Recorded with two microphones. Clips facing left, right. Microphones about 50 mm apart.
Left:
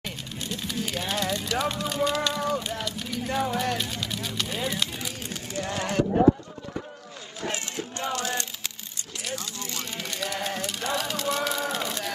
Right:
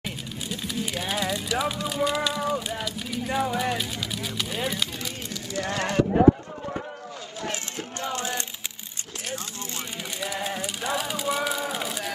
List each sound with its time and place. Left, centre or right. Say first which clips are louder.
0.0 s speech: right 1 dB; centre
5.6 s speech: right 2 dB; right
8.1 s a sound: even; right
10.2 s speech: right 1 dB; centre